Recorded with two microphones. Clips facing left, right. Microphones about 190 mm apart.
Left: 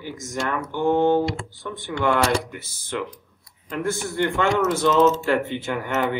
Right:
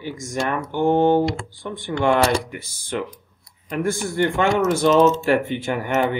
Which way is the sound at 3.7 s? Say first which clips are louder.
Right 3 dB; 15° right (ahead or behind).